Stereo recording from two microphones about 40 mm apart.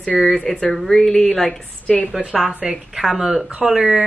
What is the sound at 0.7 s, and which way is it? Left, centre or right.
Speech, centre.